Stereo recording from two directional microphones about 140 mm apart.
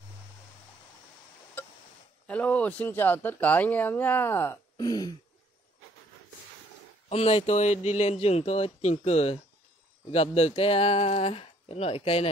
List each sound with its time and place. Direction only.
2.2 s speech: 10° left (ahead or behind)
4.8 s throat clearing: 30° left (ahead or behind)
7.1 s speech: 45° left (ahead or behind)